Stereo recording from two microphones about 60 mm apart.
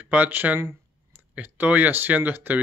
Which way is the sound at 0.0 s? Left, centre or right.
Right.